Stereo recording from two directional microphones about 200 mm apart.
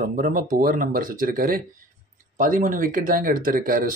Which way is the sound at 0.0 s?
45° right (ahead or behind).